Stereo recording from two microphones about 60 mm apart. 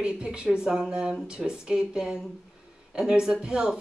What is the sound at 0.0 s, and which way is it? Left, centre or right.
Speech, centre.